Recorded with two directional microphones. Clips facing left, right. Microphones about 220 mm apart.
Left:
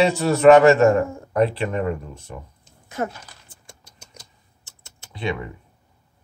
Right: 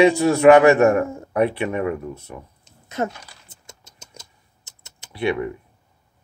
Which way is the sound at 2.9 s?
25° right (ahead or behind).